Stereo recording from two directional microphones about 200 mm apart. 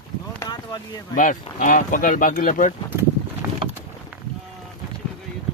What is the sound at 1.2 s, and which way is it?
Speech, 40° left (ahead or behind).